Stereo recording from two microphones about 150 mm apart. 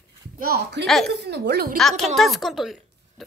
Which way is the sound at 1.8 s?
Centre (ahead or behind).